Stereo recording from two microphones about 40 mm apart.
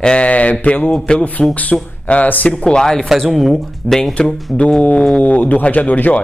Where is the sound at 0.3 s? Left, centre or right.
Left.